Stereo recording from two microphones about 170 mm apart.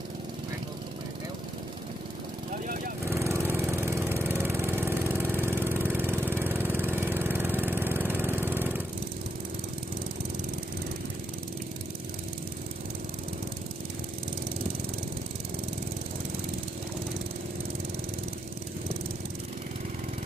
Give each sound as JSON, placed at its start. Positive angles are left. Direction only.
{"t": 2.5, "sound": "vehicle", "side_deg": -55}
{"t": 3.1, "sound": "engine", "side_deg": -15}